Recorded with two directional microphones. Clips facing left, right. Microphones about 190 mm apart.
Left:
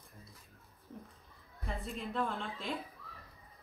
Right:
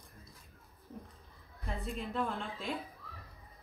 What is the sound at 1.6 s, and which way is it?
A woman's voice, centre (ahead or behind).